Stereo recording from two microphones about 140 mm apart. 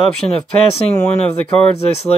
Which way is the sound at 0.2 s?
25° left (ahead or behind).